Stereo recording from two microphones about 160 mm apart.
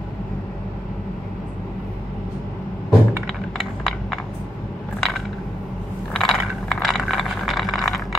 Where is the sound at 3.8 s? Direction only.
Centre (ahead or behind).